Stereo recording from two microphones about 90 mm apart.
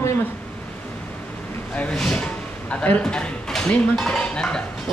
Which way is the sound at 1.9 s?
10° left (ahead or behind).